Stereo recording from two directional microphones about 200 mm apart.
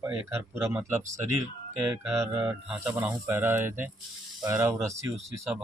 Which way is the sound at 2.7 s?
Centre (ahead or behind).